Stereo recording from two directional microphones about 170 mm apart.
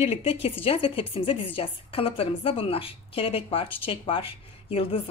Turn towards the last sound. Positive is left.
turn(degrees=35)  # may be behind; listen again after turning